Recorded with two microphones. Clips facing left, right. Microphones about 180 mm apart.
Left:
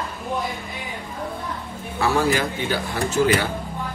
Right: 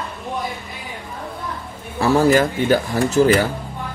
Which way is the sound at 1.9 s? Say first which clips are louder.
Right 6 dB; 45° right (ahead or behind).